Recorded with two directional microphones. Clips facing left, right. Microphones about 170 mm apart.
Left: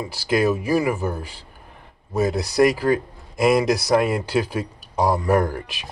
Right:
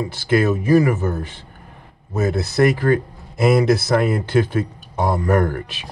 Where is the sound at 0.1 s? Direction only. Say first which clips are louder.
Right 1 dB; 10° left (ahead or behind).